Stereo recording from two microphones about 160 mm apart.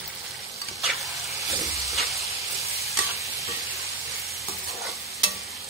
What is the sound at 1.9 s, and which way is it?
Steam, centre (ahead or behind).